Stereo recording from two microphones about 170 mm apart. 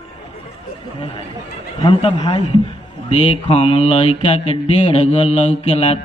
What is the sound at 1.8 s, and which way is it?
Mantra, 35° left (ahead or behind).